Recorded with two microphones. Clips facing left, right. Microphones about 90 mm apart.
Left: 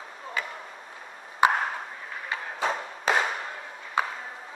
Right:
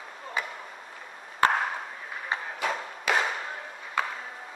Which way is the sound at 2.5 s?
30° left (ahead or behind).